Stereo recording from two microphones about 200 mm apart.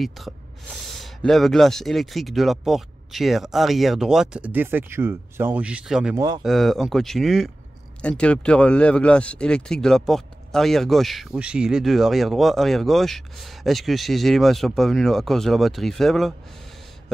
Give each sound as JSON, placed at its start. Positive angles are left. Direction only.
{"t": 0.2, "sound": "speech", "side_deg": 0}
{"t": 6.1, "sound": "speech", "side_deg": -20}
{"t": 6.4, "sound": "speech", "side_deg": 0}